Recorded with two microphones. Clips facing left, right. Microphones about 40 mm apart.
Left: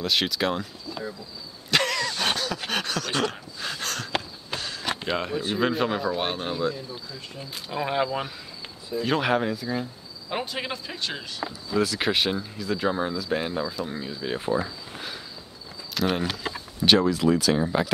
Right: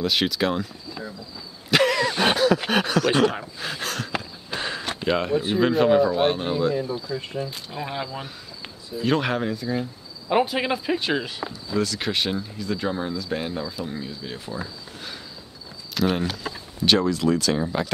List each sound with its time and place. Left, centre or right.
0.0 s speech: centre
1.7 s a sound: centre
4.6 s a sound: right
5.0 s speech: centre
6.7 s speech: right
7.5 s speech: centre
8.9 s speech: centre
10.3 s speech: centre
11.8 s speech: centre
14.2 s speech: left
15.9 s speech: centre